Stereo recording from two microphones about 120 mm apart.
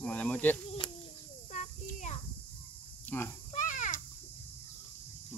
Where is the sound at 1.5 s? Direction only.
90° left.